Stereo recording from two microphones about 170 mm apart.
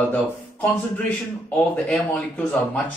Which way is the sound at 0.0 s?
10° left (ahead or behind).